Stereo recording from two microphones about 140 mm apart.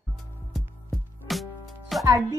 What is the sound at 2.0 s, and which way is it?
Speech, 25° right (ahead or behind).